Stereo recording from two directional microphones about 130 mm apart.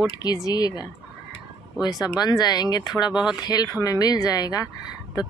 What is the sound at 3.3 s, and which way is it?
A woman's voice, 30° left (ahead or behind).